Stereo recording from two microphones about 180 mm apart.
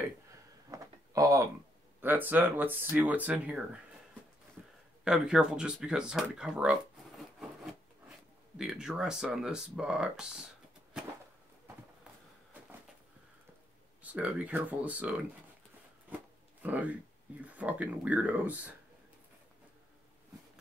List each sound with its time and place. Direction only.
0.7 s a sound: 20° right (ahead or behind)
2.0 s speech: 10° right (ahead or behind)
5.0 s speech: 5° right (ahead or behind)
8.5 s speech: 5° right (ahead or behind)
14.0 s speech: 10° right (ahead or behind)
16.6 s speech: 10° right (ahead or behind)